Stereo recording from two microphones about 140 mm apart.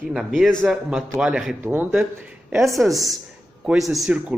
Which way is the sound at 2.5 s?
Centre (ahead or behind).